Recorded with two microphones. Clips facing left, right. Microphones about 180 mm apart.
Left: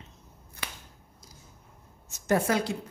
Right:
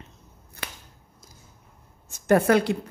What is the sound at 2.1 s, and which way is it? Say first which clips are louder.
Speech: right 7 dB; 60° right (ahead or behind).